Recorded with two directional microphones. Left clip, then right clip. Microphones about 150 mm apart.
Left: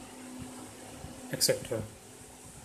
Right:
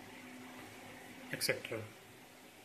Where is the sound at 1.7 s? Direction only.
5° left (ahead or behind).